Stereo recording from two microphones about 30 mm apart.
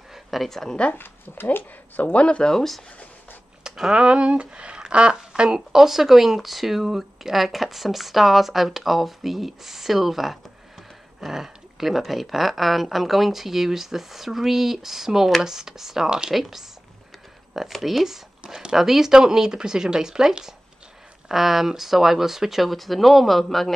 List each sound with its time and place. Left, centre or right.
0.1 s a sound: centre
0.5 s speech: centre
2.1 s speech: left
2.5 s speech: centre
3.9 s speech: right
5.7 s speech: centre
17.7 s speech: centre
18.4 s speech: right
18.8 s speech: centre
21.3 s speech: centre
22.6 s speech: centre